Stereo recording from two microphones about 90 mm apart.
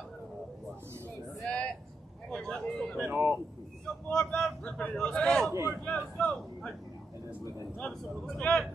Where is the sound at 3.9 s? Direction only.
10° left (ahead or behind).